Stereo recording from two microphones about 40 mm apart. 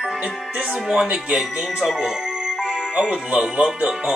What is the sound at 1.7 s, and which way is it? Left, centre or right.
Music, centre.